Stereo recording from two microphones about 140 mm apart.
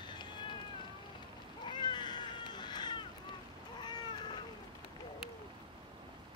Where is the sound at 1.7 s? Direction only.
30° left (ahead or behind).